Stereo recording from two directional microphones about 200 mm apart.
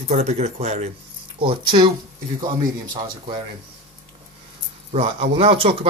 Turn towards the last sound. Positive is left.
turn(degrees=-30)  # may be behind; listen again after turning